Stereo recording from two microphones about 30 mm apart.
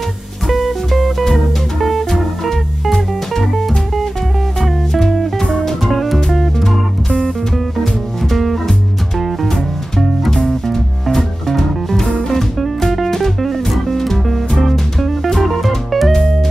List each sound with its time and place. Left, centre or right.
0.6 s music: centre
7.8 s music: centre
10.7 s music: centre
16.1 s music: centre